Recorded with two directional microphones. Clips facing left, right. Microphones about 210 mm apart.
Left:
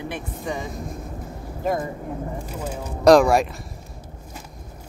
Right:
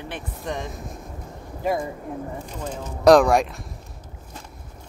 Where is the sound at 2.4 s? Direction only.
5° left (ahead or behind).